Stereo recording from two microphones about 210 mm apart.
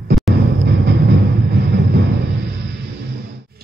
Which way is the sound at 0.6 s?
55° right (ahead or behind).